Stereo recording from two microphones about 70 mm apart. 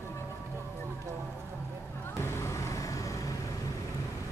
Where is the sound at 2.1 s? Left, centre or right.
Left.